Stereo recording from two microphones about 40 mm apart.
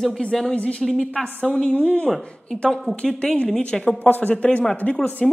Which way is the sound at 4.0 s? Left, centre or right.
Left.